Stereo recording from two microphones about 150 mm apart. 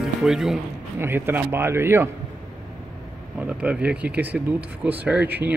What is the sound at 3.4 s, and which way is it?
Speech, 10° right (ahead or behind).